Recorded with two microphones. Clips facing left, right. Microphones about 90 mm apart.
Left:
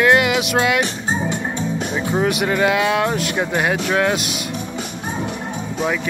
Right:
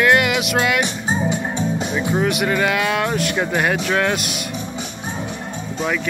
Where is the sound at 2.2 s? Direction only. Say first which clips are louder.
Left 2 dB; 30° left (ahead or behind).